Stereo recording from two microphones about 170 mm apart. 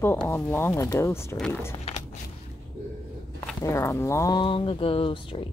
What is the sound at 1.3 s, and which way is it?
Speech, 5° left (ahead or behind).